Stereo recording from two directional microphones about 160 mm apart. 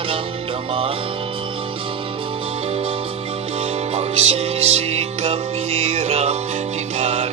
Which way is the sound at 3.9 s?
40° right (ahead or behind).